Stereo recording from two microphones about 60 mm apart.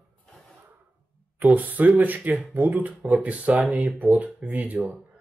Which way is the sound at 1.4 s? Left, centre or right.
Right.